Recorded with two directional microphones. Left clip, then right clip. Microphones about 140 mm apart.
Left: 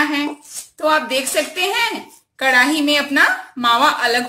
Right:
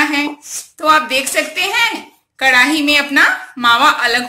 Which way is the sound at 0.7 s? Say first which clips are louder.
Right 4 dB; 35° left (ahead or behind).